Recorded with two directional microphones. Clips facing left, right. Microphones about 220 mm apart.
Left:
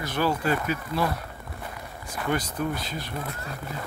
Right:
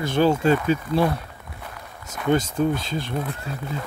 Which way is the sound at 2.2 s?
25° right (ahead or behind).